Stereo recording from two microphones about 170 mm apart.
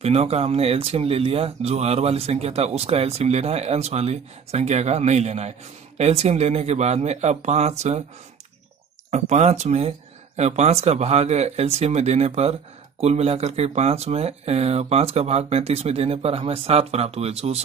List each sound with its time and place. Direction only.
0.0 s speech: 40° right (ahead or behind)
9.1 s speech: 40° right (ahead or behind)